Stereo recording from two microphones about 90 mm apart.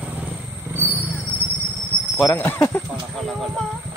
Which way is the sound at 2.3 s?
30° left (ahead or behind).